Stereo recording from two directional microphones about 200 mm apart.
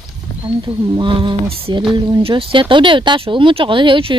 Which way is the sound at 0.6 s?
25° right (ahead or behind).